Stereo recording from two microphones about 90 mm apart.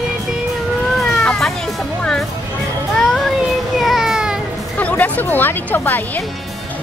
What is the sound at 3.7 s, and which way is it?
Baby cry, centre (ahead or behind).